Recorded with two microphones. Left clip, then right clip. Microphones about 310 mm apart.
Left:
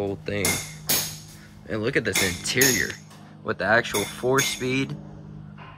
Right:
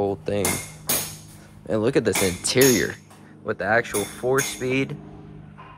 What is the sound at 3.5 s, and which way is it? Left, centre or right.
Speech, centre.